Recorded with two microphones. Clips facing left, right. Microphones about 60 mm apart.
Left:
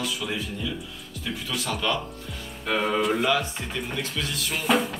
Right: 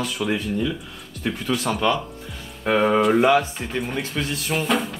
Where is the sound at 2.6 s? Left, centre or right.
Right.